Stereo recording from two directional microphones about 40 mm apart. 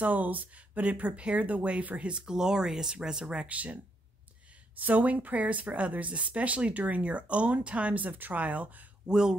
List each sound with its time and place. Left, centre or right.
0.0 s speech: right; by 3.4 s centre
3.4 s speech: right
4.7 s speech: right
9.1 s speech: centre